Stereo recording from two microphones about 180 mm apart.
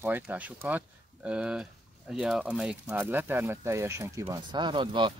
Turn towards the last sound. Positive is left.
turn(degrees=-30)  # may be behind; listen again after turning